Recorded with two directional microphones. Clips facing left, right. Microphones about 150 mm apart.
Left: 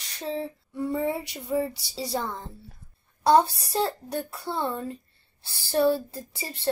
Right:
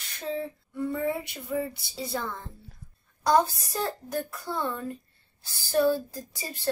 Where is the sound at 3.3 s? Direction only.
30° left (ahead or behind).